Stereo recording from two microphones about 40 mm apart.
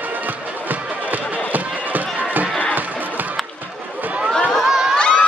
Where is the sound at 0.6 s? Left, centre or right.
Right.